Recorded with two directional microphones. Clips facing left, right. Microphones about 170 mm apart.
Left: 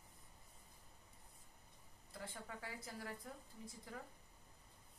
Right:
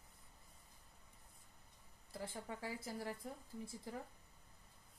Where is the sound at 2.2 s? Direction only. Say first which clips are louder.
Right 4 dB; 30° right (ahead or behind).